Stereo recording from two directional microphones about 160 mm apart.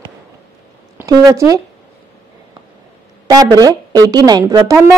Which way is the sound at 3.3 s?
25° right (ahead or behind).